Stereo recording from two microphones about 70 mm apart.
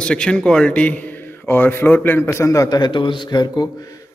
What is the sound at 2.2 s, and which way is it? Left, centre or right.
Speech, left.